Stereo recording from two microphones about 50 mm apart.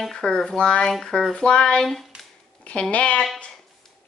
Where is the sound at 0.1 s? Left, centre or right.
Centre.